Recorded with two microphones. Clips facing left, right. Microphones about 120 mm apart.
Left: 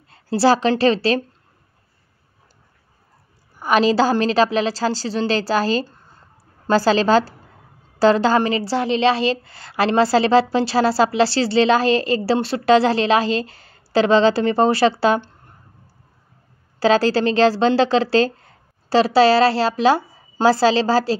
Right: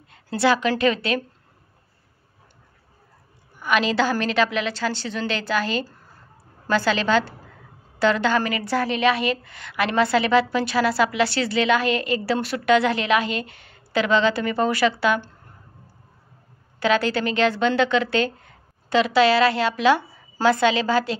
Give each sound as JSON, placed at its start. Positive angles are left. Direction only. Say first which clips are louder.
{"t": 0.1, "sound": "a woman's voice", "louder": "left 4 dB", "side_deg": 35}
{"t": 3.5, "sound": "a woman's voice", "louder": "left 5 dB", "side_deg": 35}
{"t": 16.8, "sound": "a woman's voice", "louder": "left 5 dB", "side_deg": 35}